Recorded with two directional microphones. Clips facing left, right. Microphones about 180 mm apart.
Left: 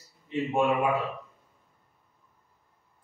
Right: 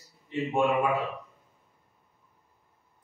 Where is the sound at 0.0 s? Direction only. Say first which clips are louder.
Left 1 dB; centre (ahead or behind).